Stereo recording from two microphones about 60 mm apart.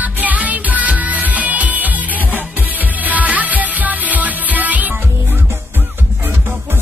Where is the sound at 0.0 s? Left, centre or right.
Right.